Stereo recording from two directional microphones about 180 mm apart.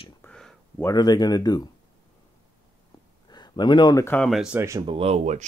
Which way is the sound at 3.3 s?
25° left (ahead or behind).